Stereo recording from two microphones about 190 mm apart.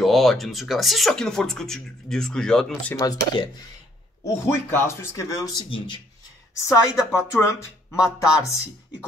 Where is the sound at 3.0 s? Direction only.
20° left (ahead or behind).